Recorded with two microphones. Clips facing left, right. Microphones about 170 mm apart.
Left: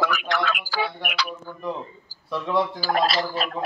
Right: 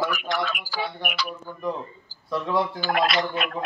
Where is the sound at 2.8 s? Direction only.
35° left (ahead or behind).